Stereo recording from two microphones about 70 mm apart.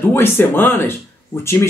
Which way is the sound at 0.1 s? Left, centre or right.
Left.